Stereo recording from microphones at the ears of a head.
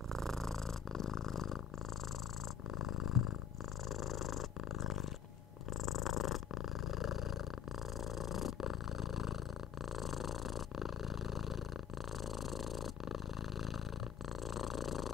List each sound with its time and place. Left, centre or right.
0.9 s purr: left
2.8 s purr: left
8.2 s purr: left
14.5 s purr: left